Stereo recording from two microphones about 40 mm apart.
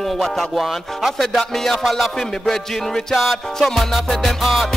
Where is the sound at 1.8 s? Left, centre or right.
Centre.